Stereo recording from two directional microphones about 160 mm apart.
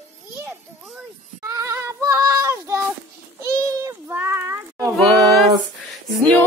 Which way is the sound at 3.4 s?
20° right (ahead or behind).